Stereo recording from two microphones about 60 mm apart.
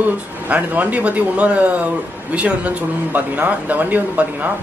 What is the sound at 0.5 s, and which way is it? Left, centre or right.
Speech, right.